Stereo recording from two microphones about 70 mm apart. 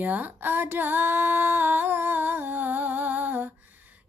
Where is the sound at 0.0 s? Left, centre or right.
Right.